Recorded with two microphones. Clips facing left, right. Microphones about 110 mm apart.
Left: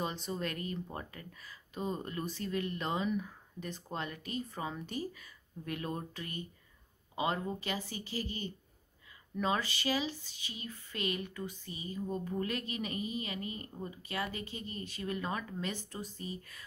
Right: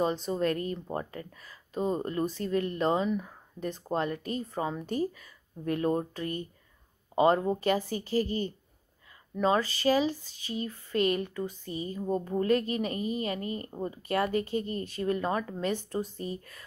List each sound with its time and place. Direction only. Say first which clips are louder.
0.0 s speech: right 9 dB; 35° right (ahead or behind)
3.5 s speech: right 9 dB; 40° right (ahead or behind)